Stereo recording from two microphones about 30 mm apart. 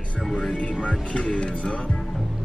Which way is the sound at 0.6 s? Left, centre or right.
Left.